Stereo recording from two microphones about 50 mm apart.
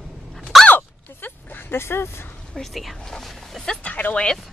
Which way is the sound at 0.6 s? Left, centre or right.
Left.